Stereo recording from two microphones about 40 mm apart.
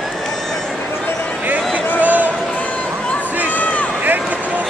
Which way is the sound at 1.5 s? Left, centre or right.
Right.